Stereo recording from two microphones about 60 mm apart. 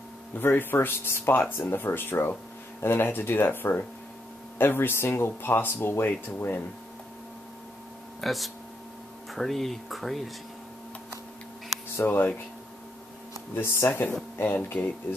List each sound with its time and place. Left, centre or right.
0.3 s speech: left
8.2 s speech: centre
12.0 s speech: left
13.8 s speech: left